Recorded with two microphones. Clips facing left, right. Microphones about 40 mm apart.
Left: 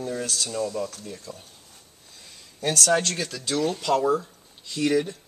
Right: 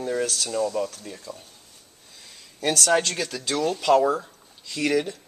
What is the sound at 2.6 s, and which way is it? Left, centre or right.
Speech, right.